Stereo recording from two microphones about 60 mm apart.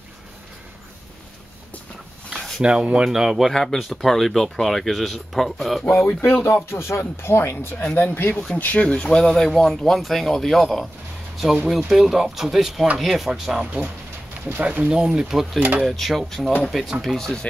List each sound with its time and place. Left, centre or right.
2.2 s a sound: centre
2.6 s speech: centre
6.0 s speech: left
7.9 s speech: left
8.5 s speech: left
8.8 s speech: centre
14.9 s speech: centre